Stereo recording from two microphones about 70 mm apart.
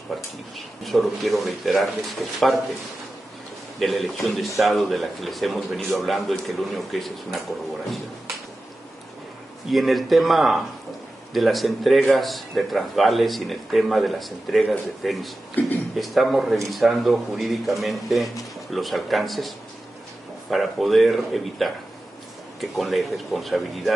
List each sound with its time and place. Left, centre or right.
0.6 s speech: centre
3.8 s speech: centre
9.7 s speech: centre
15.6 s speech: left
16.0 s speech: centre